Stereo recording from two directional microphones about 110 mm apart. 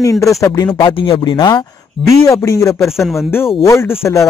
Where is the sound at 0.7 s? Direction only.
50° left (ahead or behind).